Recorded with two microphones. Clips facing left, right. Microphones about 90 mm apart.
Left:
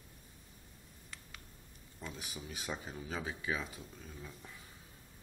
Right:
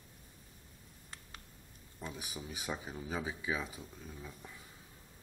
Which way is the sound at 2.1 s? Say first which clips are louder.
Right 1 dB; 10° right (ahead or behind).